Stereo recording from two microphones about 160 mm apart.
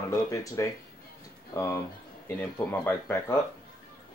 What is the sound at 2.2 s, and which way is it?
Speech, 10° left (ahead or behind).